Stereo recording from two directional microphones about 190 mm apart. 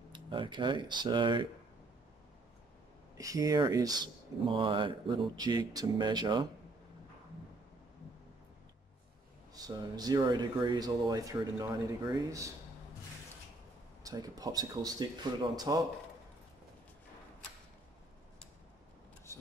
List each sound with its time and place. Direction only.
0.1 s speech: 25° right (ahead or behind)
3.2 s speech: 20° right (ahead or behind)
9.5 s speech: 20° right (ahead or behind)
14.0 s speech: 20° right (ahead or behind)
19.3 s vehicle: 15° left (ahead or behind)